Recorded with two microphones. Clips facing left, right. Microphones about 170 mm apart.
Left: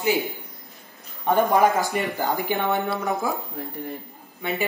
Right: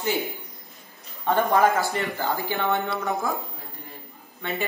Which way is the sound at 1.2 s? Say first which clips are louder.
Left 2 dB; 10° left (ahead or behind).